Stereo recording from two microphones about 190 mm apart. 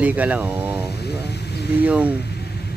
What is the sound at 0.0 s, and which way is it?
Speech, 10° right (ahead or behind).